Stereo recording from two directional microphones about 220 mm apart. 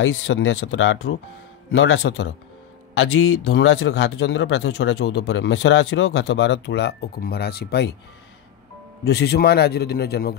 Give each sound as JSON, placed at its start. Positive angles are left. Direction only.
{"t": 0.0, "sound": "a man's voice", "side_deg": 65}
{"t": 9.1, "sound": "a man's voice", "side_deg": 50}